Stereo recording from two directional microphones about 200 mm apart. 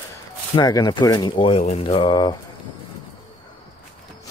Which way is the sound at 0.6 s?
20° left (ahead or behind).